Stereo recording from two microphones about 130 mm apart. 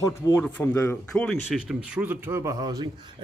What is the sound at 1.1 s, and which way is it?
Speech, 10° left (ahead or behind).